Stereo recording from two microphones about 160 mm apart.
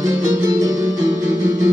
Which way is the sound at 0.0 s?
20° right (ahead or behind).